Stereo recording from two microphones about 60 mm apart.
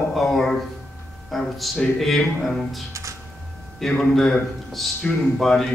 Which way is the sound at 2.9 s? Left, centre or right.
Right.